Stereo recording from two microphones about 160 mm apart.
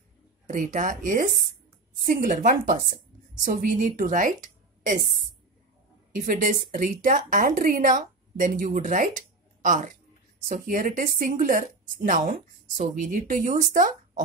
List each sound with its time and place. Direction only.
0.5 s a woman's voice: 55° right (ahead or behind)
6.1 s speech: 60° right (ahead or behind)
9.6 s a sound: 55° right (ahead or behind)
10.4 s speech: 55° right (ahead or behind)